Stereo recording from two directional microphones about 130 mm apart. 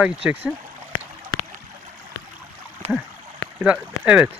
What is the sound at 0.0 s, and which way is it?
Speech, 10° right (ahead or behind).